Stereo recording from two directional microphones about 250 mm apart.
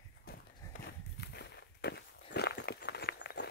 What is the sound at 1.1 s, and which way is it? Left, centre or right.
Walk, left.